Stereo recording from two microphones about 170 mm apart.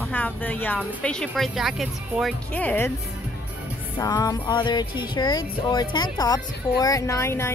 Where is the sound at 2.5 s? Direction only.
10° left (ahead or behind).